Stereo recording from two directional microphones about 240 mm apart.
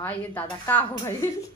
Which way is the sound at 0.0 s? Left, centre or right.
Centre.